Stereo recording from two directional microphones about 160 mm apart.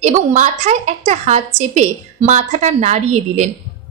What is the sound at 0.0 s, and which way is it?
A woman's voice, 50° right (ahead or behind).